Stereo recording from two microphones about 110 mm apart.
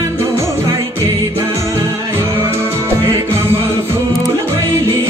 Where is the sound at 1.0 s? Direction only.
30° right (ahead or behind).